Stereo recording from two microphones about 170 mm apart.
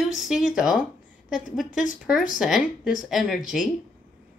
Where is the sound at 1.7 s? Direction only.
50° left (ahead or behind).